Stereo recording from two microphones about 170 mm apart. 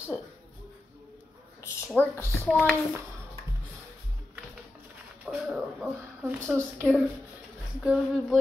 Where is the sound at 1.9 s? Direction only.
15° left (ahead or behind).